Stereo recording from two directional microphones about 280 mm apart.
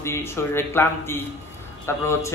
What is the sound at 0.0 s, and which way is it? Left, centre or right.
Speech, centre.